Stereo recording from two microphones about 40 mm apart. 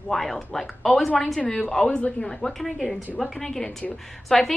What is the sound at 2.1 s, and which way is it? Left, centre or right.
Speech, left.